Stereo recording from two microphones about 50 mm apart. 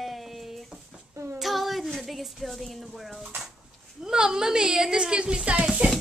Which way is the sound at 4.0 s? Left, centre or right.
Centre.